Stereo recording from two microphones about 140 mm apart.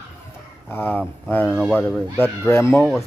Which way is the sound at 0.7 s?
15° left (ahead or behind).